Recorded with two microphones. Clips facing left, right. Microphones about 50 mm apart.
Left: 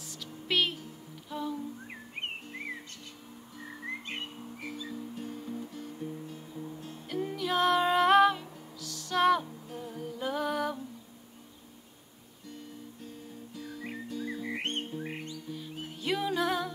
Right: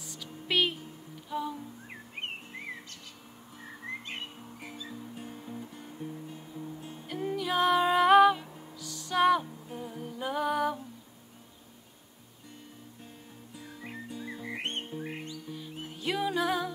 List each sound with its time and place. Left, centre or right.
0.0 s a sound: centre
1.3 s music: centre
4.6 s music: centre
13.6 s music: centre
15.0 s music: centre